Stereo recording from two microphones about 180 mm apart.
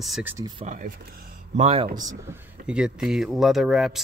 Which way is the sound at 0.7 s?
45° right (ahead or behind).